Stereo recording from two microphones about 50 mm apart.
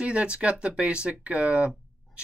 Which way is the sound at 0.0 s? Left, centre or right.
Right.